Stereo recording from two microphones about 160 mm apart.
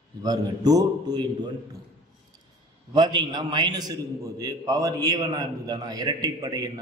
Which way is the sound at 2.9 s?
25° right (ahead or behind).